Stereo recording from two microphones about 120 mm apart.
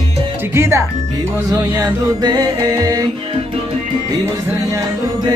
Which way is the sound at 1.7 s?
35° right (ahead or behind).